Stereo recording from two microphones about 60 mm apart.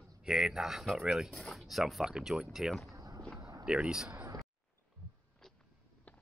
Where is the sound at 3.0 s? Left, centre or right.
Right.